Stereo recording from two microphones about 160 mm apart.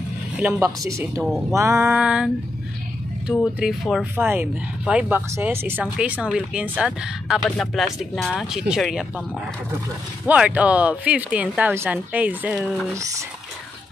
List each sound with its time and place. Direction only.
0.4 s speech: 15° right (ahead or behind)
3.5 s speech: centre (ahead or behind)
4.0 s speech: 15° right (ahead or behind)
7.4 s speech: 5° left (ahead or behind)
10.2 s speech: 10° right (ahead or behind)
12.9 s speech: 20° right (ahead or behind)